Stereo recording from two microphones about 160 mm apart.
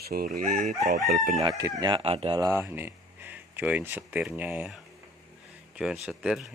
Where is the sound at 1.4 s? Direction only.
20° right (ahead or behind); by 2.4 s 35° right (ahead or behind).